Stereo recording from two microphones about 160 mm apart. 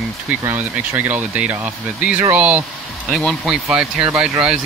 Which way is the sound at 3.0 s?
Centre (ahead or behind).